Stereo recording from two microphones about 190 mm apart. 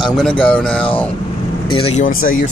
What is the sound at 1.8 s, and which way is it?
Speech, 40° left (ahead or behind).